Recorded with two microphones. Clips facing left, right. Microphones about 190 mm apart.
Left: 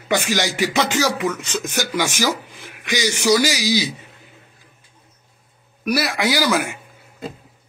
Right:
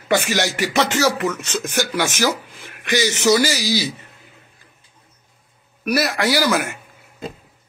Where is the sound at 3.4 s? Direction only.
15° left (ahead or behind).